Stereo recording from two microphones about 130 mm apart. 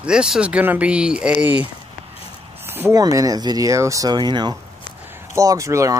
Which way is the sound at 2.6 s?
15° right (ahead or behind).